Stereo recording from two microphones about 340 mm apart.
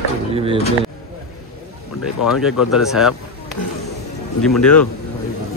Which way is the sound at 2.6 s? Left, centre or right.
Centre.